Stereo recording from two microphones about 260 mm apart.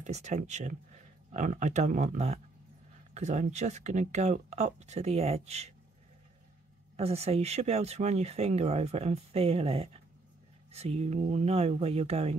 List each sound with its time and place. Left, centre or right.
0.0 s speech: right
7.0 s speech: right